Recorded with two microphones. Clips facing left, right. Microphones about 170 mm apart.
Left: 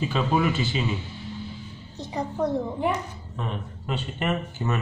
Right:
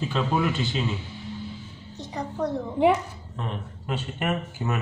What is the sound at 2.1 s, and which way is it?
Speech, 20° left (ahead or behind).